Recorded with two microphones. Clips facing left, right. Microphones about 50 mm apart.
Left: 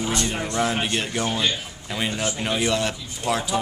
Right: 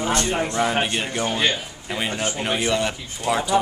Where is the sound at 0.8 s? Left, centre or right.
Centre.